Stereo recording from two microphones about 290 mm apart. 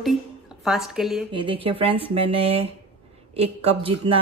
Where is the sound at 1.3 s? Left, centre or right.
Centre.